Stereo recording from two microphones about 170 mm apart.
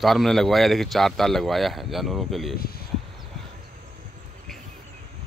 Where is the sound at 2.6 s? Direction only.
60° left (ahead or behind).